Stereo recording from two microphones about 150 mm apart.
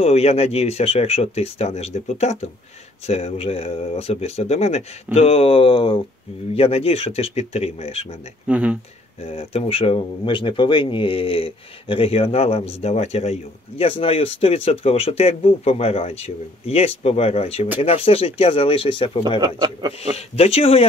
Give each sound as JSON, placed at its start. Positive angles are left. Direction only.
{"t": 0.0, "sound": "speech", "side_deg": 40}
{"t": 8.5, "sound": "speech", "side_deg": -10}
{"t": 9.2, "sound": "speech", "side_deg": 45}
{"t": 19.4, "sound": "speech", "side_deg": -30}
{"t": 20.0, "sound": "speech", "side_deg": 40}